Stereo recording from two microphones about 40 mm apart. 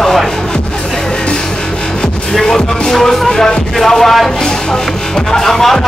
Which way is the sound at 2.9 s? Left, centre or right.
Centre.